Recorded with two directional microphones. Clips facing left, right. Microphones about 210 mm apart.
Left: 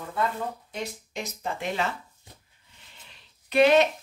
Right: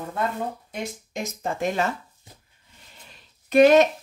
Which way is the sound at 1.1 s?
45° right (ahead or behind).